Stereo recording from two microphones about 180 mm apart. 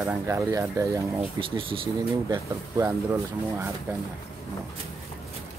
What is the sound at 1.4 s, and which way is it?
Speech, 30° right (ahead or behind).